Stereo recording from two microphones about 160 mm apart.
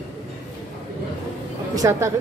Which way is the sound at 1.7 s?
20° right (ahead or behind).